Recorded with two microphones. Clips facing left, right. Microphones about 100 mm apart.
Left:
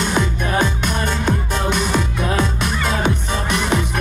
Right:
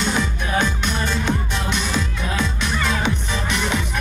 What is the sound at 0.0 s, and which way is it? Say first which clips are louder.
Music: left 3 dB; 50° left (ahead or behind).